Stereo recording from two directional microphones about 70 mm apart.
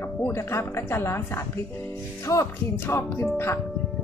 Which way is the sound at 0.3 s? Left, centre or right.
Left.